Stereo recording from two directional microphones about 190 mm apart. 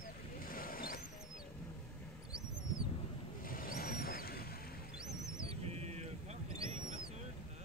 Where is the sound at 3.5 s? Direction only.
50° left (ahead or behind).